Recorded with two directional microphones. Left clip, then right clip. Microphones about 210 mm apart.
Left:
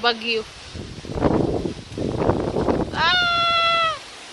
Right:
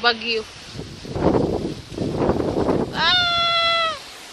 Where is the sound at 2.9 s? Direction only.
Centre (ahead or behind).